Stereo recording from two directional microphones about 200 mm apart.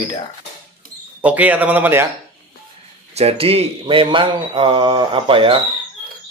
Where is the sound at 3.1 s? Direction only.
30° right (ahead or behind).